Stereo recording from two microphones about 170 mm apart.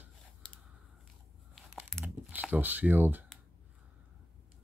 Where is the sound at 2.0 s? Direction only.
10° right (ahead or behind).